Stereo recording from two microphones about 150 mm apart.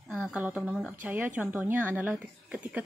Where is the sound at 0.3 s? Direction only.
10° right (ahead or behind).